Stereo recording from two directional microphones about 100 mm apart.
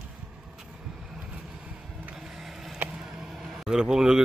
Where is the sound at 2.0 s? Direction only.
5° right (ahead or behind).